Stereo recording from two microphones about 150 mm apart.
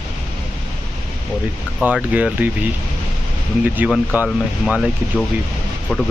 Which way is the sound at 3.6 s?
10° right (ahead or behind).